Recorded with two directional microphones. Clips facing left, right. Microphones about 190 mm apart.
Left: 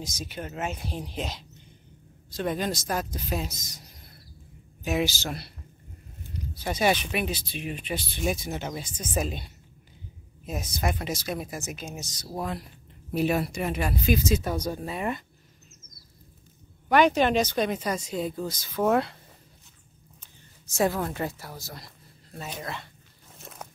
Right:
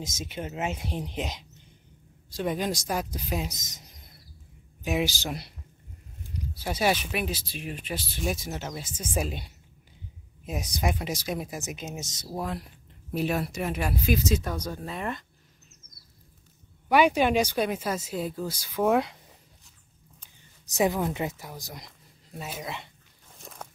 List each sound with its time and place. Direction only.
0.0 s speech: 25° right (ahead or behind)
4.8 s speech: 15° right (ahead or behind)
12.3 s speech: centre (ahead or behind)
16.9 s speech: 10° right (ahead or behind)
20.9 s speech: 15° right (ahead or behind)
23.3 s walk: 5° left (ahead or behind)